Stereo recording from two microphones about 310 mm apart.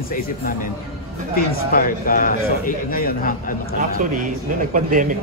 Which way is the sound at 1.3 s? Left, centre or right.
Left.